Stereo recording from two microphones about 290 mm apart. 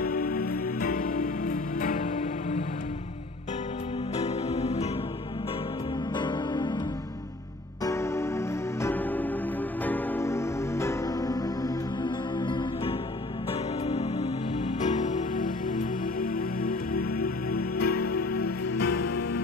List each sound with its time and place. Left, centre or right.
0.0 s music: left
4.2 s music: left
6.1 s music: centre
7.8 s music: centre; by 18.5 s left
18.8 s music: left